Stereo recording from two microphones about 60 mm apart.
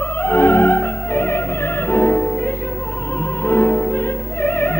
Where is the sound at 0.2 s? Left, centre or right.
Left.